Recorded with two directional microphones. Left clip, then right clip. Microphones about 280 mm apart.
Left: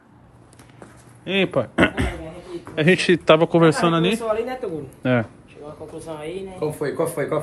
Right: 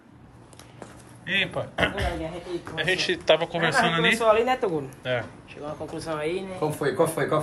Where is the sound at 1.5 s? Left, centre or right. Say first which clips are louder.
Left 6 dB; left.